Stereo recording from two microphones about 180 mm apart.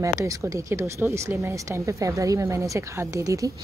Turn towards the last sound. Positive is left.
turn(degrees=-20)  # may be behind; listen again after turning